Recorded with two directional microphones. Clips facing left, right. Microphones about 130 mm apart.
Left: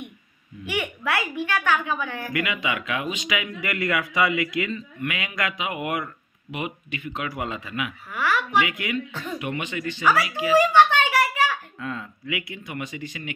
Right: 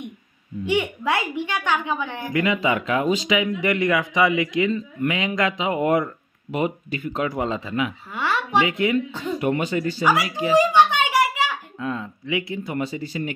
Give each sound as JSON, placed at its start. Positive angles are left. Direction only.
{"t": 0.7, "sound": "speech", "side_deg": -20}
{"t": 2.4, "sound": "speech", "side_deg": -35}
{"t": 10.6, "sound": "a sound", "side_deg": -15}